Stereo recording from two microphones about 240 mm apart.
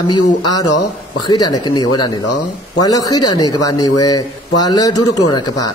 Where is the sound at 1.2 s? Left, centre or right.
Centre.